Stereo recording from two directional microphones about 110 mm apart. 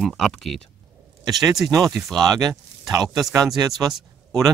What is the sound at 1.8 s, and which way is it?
Speech, centre (ahead or behind).